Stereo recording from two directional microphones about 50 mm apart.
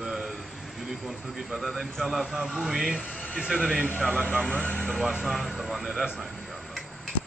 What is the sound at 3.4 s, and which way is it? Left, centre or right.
Speech, centre.